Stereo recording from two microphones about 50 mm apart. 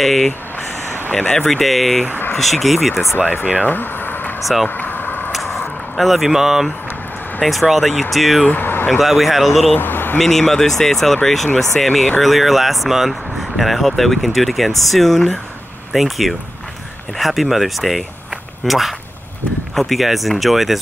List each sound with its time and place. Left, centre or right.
0.0 s speech: centre
1.3 s speech: centre
3.5 s a sound: left
4.6 s vehicle: left
5.9 s speech: centre
8.5 s a sound: left
8.9 s speech: centre
9.8 s a sound: left
10.1 s speech: centre